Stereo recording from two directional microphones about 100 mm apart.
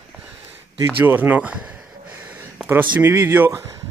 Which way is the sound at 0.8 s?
20° right (ahead or behind).